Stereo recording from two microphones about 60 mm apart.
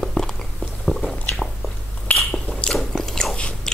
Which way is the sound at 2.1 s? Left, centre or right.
Left.